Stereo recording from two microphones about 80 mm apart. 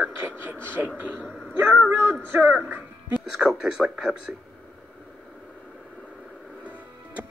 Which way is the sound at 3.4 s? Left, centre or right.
Centre.